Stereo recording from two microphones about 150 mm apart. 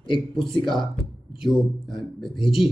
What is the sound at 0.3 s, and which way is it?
Speech, centre (ahead or behind).